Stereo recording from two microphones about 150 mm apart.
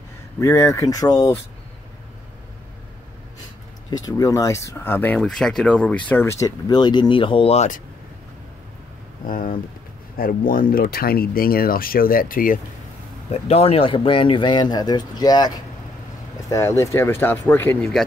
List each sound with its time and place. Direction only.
0.4 s speech: 20° left (ahead or behind)
3.9 s speech: 25° left (ahead or behind); by 7.8 s 50° left (ahead or behind)
9.3 s speech: 70° left (ahead or behind)
13.3 s speech: 40° left (ahead or behind); by 18.0 s 5° left (ahead or behind)